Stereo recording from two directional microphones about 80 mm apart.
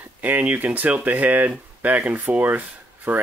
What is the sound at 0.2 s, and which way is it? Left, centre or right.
Speech, right.